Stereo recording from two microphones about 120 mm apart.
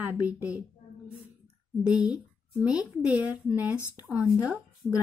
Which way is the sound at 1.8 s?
10° right (ahead or behind).